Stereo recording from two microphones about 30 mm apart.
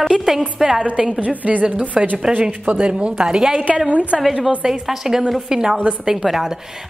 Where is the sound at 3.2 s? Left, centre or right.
Right.